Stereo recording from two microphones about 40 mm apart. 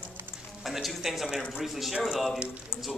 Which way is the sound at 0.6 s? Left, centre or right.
Centre.